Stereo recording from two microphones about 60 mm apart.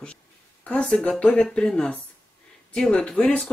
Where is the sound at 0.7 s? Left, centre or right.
Left.